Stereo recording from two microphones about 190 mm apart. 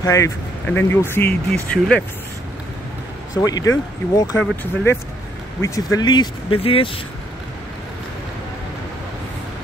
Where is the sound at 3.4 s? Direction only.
20° left (ahead or behind).